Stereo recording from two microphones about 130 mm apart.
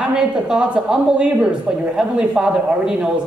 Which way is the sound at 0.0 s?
5° right (ahead or behind).